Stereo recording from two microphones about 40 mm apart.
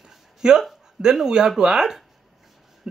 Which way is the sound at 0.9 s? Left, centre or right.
Centre.